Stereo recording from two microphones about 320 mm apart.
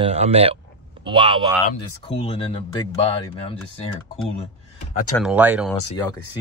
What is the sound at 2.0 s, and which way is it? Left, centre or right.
Speech, centre.